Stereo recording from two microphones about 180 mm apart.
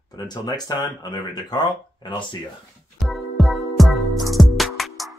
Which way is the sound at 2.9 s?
Centre (ahead or behind).